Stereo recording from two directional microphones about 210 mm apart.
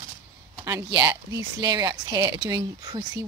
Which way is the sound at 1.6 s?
20° right (ahead or behind).